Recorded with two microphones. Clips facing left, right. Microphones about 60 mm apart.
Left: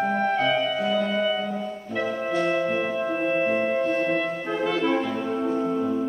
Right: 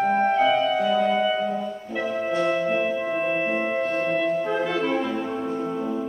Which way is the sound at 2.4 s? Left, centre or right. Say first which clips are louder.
Right 2 dB; centre.